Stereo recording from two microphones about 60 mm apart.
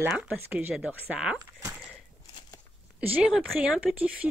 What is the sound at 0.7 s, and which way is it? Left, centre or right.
Speech, centre.